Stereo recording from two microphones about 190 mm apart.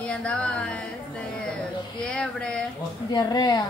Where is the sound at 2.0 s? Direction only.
5° left (ahead or behind).